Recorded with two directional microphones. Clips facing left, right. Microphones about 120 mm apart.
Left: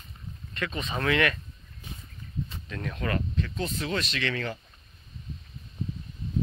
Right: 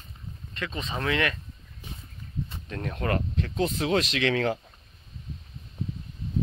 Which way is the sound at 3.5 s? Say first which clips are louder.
Right 8 dB; 70° right (ahead or behind).